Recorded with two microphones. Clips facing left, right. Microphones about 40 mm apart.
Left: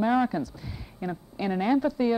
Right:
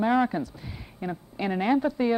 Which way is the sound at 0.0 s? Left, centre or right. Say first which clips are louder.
Right 1 dB; right.